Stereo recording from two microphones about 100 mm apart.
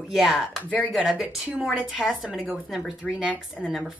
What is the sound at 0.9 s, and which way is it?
A woman's voice, 5° right (ahead or behind).